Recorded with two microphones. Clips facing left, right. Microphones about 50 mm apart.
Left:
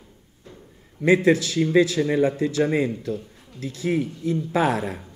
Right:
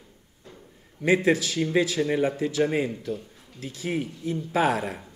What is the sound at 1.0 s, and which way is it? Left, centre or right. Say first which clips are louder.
Speech: left 4 dB; left.